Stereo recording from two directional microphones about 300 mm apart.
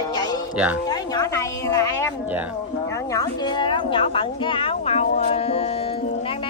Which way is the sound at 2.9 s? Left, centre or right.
Centre.